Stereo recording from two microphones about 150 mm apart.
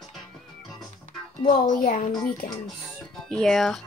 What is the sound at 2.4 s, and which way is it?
Speech, 90° left.